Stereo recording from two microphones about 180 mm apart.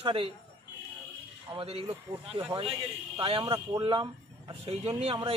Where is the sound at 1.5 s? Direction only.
35° right (ahead or behind).